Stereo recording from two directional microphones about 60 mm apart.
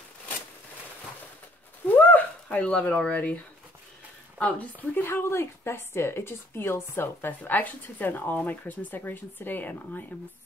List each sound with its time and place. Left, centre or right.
1.9 s a sound: left
4.4 s speech: left
5.0 s a woman's voice: left